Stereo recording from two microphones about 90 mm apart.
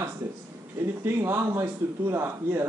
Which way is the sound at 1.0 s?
30° right (ahead or behind).